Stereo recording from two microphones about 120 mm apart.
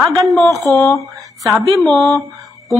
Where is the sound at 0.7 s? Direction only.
25° left (ahead or behind).